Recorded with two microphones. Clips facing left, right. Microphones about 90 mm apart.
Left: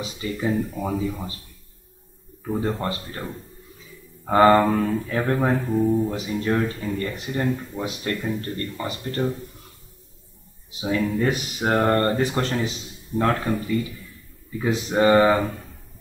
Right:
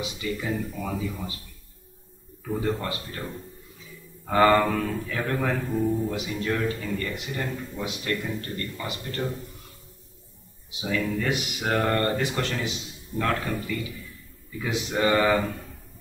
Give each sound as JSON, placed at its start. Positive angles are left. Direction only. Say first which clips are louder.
{"t": 0.0, "sound": "speech", "louder": "left 4 dB", "side_deg": 30}
{"t": 2.6, "sound": "speech", "louder": "even", "side_deg": 30}
{"t": 4.3, "sound": "speech", "louder": "left 4 dB", "side_deg": 25}
{"t": 6.1, "sound": "speech", "louder": "left 4 dB", "side_deg": 30}
{"t": 10.8, "sound": "speech", "louder": "left 4 dB", "side_deg": 30}